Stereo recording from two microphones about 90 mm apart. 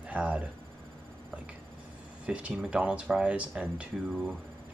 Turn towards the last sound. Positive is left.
turn(degrees=-5)  # may be behind; listen again after turning